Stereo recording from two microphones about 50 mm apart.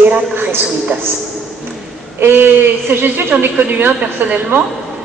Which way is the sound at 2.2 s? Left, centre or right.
Right.